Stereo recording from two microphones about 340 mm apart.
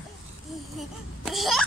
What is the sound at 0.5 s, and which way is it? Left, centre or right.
Babbling, centre.